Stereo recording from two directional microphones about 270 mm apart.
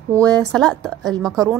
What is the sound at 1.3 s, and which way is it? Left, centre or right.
Speech, centre.